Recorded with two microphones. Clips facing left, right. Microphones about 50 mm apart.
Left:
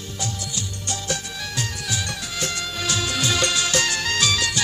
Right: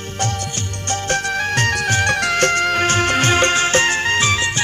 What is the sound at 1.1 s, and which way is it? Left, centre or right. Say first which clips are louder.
Music: right 13 dB; right.